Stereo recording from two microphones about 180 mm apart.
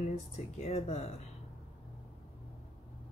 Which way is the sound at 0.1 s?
40° left (ahead or behind).